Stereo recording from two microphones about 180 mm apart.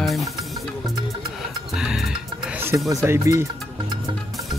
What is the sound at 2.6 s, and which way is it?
Speech, 15° right (ahead or behind).